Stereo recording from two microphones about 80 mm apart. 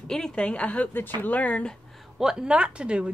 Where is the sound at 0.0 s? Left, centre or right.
Centre.